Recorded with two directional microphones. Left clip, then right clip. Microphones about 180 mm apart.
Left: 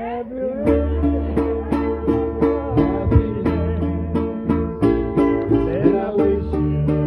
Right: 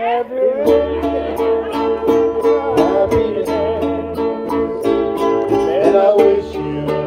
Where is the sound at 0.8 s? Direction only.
40° left (ahead or behind).